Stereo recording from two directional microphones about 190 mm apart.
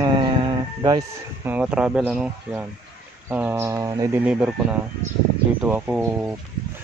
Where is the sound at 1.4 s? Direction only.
5° right (ahead or behind).